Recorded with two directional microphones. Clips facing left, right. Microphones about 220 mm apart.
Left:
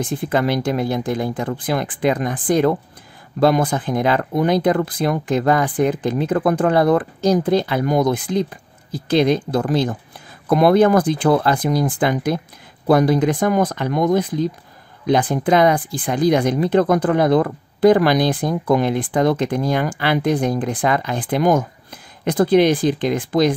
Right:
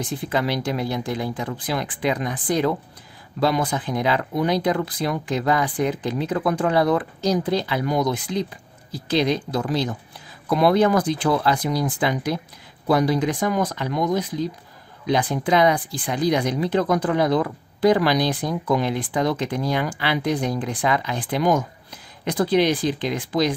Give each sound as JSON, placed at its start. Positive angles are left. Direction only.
{"t": 0.0, "sound": "speech", "side_deg": 50}